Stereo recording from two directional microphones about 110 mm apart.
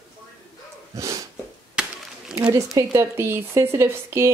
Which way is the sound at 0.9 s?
30° right (ahead or behind).